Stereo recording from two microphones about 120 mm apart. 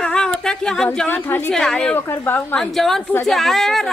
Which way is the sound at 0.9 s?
15° left (ahead or behind).